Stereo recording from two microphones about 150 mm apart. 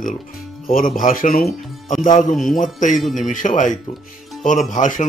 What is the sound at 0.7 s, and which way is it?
Speech, 65° left (ahead or behind).